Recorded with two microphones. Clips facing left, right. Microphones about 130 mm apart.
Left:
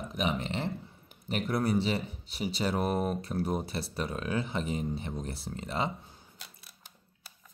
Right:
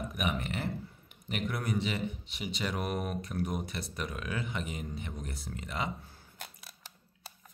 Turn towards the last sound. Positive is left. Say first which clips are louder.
# right 4 dB
turn(degrees=-90)